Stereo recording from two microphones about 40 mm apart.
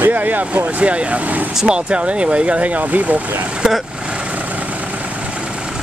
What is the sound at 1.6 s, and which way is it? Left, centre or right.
Speech, right.